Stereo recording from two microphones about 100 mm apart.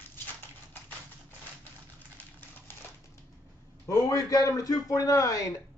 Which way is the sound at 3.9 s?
40° left (ahead or behind).